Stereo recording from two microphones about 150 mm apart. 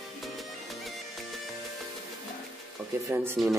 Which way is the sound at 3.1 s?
15° right (ahead or behind).